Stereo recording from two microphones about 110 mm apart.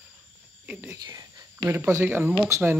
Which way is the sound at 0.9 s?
35° right (ahead or behind).